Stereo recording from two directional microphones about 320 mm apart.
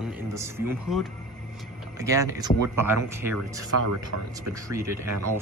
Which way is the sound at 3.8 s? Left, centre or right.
Right.